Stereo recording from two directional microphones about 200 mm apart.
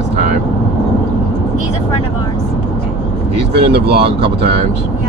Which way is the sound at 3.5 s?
55° right (ahead or behind).